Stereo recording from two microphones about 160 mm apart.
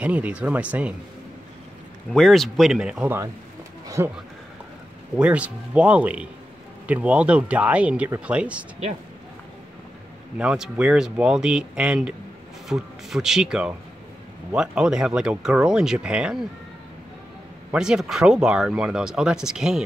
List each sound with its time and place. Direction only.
0.0 s speech: 10° right (ahead or behind)
2.1 s speech: centre (ahead or behind)
3.8 s a sound: 20° right (ahead or behind)
5.1 s speech: 5° right (ahead or behind)
10.3 s speech: 5° right (ahead or behind)
17.6 s speech: 5° right (ahead or behind)